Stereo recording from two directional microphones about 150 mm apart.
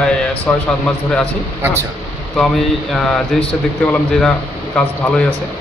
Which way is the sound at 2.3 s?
Centre (ahead or behind).